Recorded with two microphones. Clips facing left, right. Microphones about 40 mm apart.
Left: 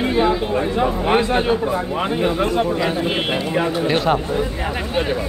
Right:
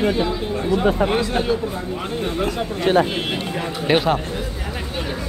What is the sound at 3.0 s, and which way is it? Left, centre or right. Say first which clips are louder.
Speech: left 3 dB; left.